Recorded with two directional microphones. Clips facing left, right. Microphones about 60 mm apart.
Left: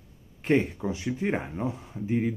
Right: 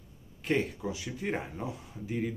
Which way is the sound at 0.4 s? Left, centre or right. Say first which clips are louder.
Left 6 dB; left.